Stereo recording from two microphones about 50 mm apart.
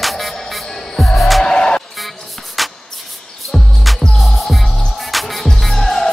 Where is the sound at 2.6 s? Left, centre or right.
Centre.